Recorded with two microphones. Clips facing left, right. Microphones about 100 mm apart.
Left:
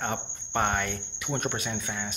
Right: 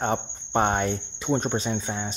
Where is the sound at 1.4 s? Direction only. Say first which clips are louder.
Right 5 dB; 25° right (ahead or behind).